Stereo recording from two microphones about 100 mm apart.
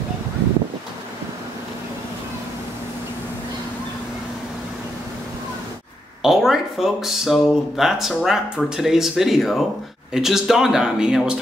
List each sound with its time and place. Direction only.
6.2 s speech: 5° right (ahead or behind)